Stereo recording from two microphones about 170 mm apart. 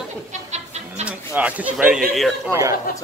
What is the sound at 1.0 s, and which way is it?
Speech, 10° right (ahead or behind).